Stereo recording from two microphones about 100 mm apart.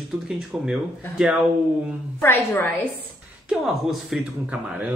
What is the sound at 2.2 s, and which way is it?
Speech, 20° left (ahead or behind).